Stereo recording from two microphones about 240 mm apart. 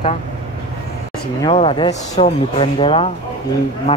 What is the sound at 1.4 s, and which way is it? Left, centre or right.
Speech, left.